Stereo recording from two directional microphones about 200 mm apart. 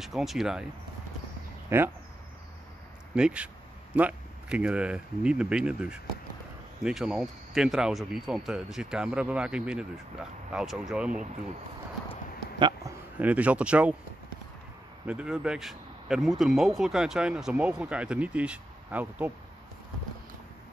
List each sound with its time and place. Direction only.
0.0 s speech: centre (ahead or behind)
1.7 s speech: 10° right (ahead or behind)
3.2 s speech: 5° right (ahead or behind)
12.5 s speech: 20° right (ahead or behind)
13.2 s speech: 5° right (ahead or behind)
15.0 s speech: 5° right (ahead or behind)